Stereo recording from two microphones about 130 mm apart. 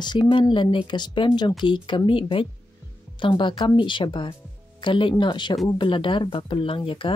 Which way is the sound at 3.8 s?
40° left (ahead or behind).